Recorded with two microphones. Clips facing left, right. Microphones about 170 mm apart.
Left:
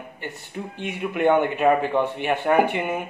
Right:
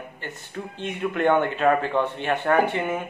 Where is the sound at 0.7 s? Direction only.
10° left (ahead or behind).